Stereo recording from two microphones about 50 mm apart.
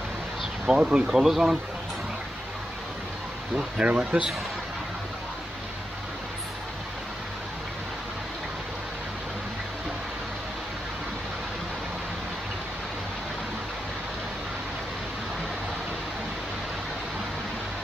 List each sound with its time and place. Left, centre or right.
0.7 s speech: centre
3.5 s speech: centre
4.1 s a man's voice: right